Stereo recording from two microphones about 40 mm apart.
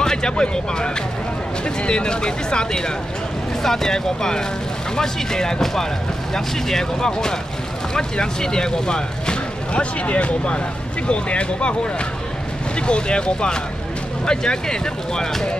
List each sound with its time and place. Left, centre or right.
0.0 s speech: centre